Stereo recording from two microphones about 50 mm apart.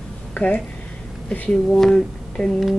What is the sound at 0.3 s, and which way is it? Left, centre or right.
Speech, left.